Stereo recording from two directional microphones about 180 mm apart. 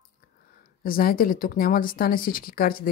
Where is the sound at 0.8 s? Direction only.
50° left (ahead or behind).